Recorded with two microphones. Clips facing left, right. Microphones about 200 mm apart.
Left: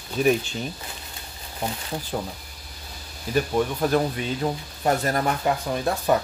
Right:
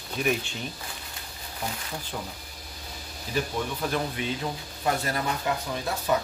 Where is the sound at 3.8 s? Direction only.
45° left (ahead or behind).